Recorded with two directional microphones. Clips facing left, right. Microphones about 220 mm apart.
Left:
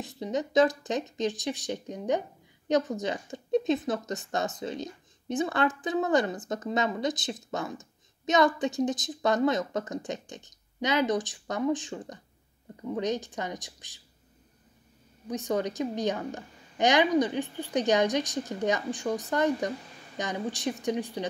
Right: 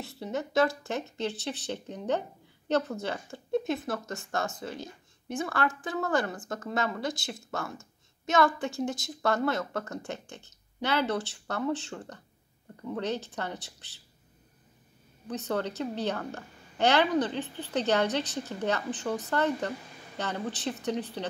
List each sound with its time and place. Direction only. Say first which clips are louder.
0.0 s a woman's voice: left 3 dB; 15° left (ahead or behind)
15.2 s a woman's voice: left 2 dB; 15° left (ahead or behind)